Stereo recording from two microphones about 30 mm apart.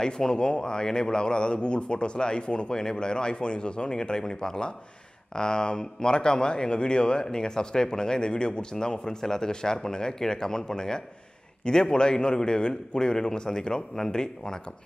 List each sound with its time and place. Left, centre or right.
0.0 s speech: left